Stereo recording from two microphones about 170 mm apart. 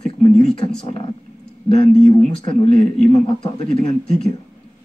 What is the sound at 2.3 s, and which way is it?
Speech, 30° left (ahead or behind).